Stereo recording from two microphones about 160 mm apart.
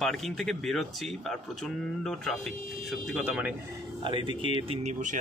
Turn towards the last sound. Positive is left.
turn(degrees=-35)  # may be behind; listen again after turning